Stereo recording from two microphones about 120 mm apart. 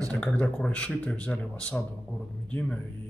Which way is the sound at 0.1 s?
10° left (ahead or behind).